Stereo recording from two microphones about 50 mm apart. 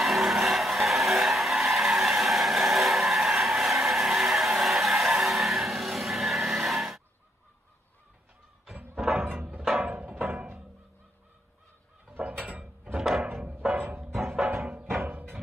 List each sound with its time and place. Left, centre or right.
0.0 s vehicle: centre
9.6 s music: centre
9.8 s music: right
12.2 s a sound: right
13.5 s music: right
14.3 s music: centre
15.0 s music: right